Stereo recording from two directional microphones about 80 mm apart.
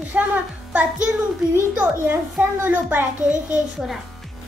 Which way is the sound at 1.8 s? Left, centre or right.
Right.